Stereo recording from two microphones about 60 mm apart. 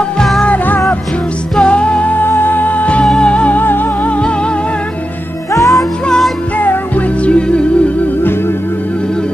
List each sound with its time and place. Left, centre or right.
1.5 s music: centre
2.2 s music: left
5.5 s music: left
6.6 s music: left
7.2 s music: centre